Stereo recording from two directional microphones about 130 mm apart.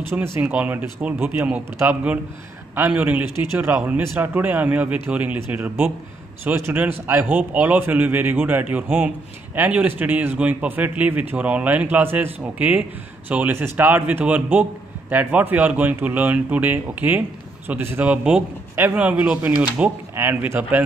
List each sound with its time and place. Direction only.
0.4 s a man's voice: 15° right (ahead or behind)